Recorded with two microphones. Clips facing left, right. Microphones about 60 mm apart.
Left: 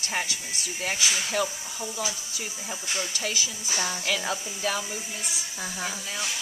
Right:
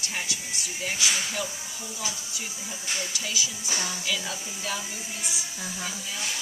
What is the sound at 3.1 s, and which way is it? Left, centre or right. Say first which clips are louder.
Speech: left 1 dB; left.